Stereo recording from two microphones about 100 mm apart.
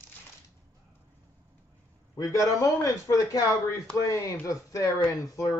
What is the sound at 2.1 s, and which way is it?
Speech, 30° left (ahead or behind).